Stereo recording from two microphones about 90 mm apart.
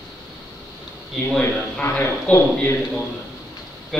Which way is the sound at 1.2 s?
5° left (ahead or behind).